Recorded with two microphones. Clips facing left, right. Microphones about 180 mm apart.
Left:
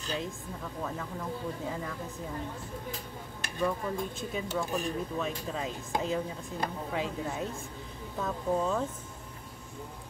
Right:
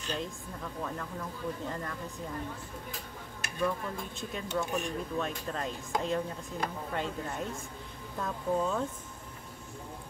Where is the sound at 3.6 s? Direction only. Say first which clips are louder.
Left 2 dB; 5° left (ahead or behind).